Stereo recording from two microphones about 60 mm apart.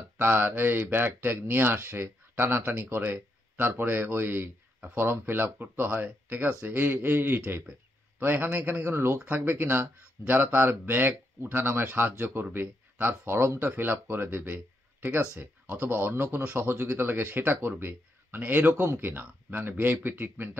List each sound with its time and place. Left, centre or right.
0.2 s speech: right
8.8 s speech: right